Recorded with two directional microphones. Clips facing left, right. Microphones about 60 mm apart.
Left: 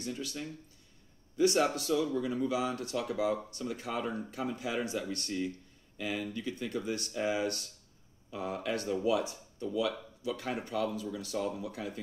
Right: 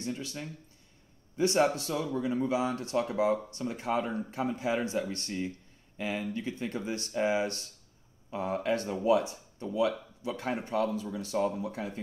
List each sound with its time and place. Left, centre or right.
0.0 s speech: right